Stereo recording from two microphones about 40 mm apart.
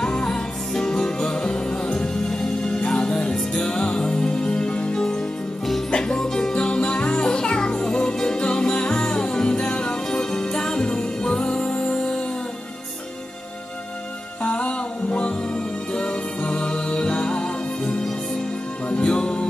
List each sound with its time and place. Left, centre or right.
0.0 s music: left
14.4 s music: left